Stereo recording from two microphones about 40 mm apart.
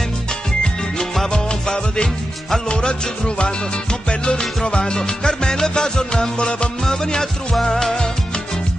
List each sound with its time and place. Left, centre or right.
0.9 s music: centre
4.6 s music: left